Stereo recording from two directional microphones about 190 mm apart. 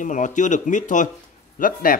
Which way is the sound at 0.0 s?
40° left (ahead or behind).